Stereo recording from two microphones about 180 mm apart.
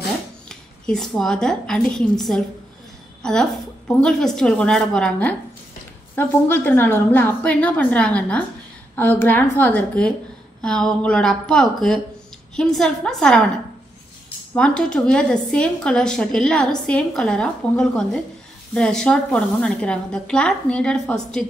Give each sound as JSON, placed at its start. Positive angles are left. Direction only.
{"t": 0.5, "sound": "a woman's voice", "side_deg": 5}
{"t": 14.5, "sound": "a woman's voice", "side_deg": 5}